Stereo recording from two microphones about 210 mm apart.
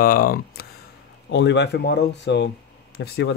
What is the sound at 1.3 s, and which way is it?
Speech, 55° left (ahead or behind).